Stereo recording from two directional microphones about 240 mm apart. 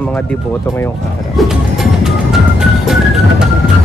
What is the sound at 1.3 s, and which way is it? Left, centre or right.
Music, centre.